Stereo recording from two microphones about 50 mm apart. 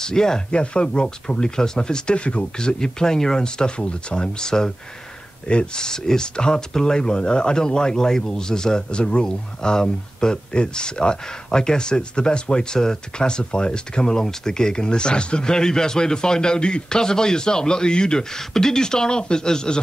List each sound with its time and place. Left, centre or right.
0.0 s speech: centre